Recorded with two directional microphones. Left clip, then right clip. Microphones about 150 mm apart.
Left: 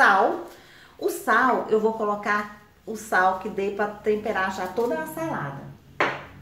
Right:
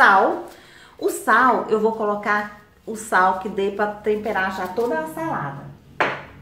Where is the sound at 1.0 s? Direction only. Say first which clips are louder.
Right 4 dB; 15° right (ahead or behind); by 5.3 s 5° left (ahead or behind).